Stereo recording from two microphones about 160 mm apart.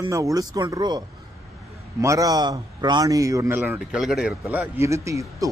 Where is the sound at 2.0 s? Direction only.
20° right (ahead or behind).